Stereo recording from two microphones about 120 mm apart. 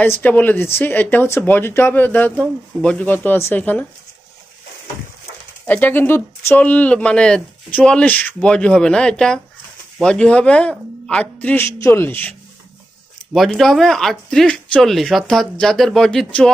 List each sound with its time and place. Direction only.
0.0 s speech: 15° left (ahead or behind)
5.7 s speech: 15° left (ahead or behind)
13.5 s speech: 5° left (ahead or behind)